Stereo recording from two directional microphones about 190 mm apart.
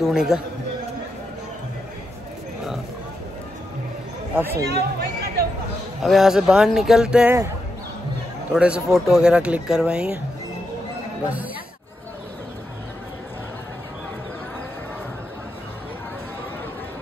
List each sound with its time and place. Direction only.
0.0 s speech: 5° right (ahead or behind)
4.4 s speech: 10° right (ahead or behind)
4.6 s chatter: 60° right (ahead or behind)
6.0 s speech: centre (ahead or behind)
8.5 s speech: 5° right (ahead or behind)